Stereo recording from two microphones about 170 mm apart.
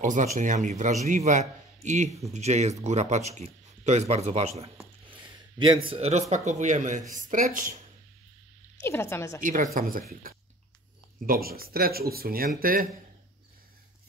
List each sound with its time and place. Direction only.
0.0 s a man's voice: 45° right (ahead or behind)
5.0 s a sound: 30° right (ahead or behind)
6.3 s a man's voice: 45° right (ahead or behind)
8.8 s a woman's voice: 15° left (ahead or behind)
9.4 s a man's voice: 50° right (ahead or behind)